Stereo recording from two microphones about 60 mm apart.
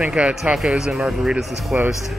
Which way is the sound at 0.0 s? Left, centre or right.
Centre.